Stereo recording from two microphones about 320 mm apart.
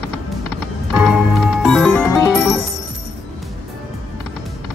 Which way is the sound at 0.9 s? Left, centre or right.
Centre.